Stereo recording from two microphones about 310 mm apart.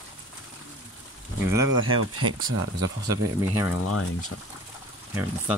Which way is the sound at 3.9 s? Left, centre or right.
Left.